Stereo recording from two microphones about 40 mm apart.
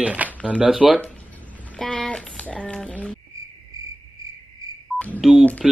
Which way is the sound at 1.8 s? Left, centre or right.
Centre.